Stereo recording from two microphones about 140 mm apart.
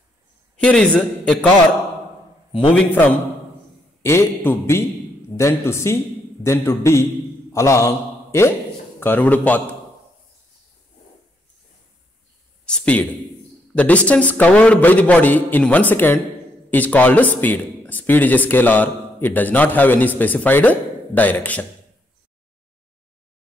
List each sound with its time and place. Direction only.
0.6 s speech: 10° left (ahead or behind)
2.7 s a man's voice: 10° left (ahead or behind)
12.6 s speech: 5° left (ahead or behind)